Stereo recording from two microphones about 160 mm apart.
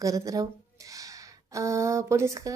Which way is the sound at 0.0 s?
20° right (ahead or behind).